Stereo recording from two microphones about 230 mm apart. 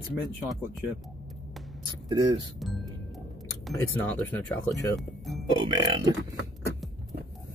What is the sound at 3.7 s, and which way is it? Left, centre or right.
Speech, centre.